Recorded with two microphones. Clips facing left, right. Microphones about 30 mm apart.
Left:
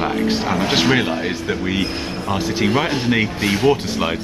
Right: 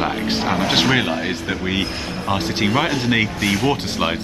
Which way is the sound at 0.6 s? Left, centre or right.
Centre.